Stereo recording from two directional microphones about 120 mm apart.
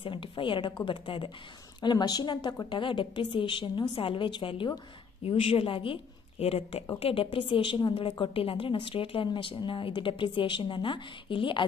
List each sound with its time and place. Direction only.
0.0 s a woman's voice: 45° left (ahead or behind)